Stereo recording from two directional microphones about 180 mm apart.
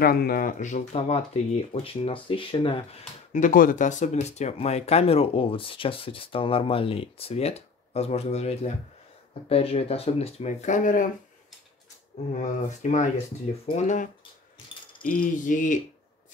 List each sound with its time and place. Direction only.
0.0 s speech: 55° left (ahead or behind); by 3.0 s 30° left (ahead or behind)
3.3 s speech: 50° left (ahead or behind)
12.4 s speech: 40° left (ahead or behind)